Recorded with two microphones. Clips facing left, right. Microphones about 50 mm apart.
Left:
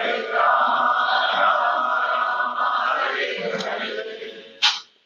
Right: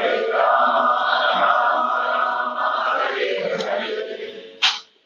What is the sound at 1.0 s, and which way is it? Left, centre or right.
Chant, right.